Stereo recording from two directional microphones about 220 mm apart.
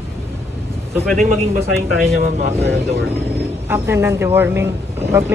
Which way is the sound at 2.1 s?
40° right (ahead or behind).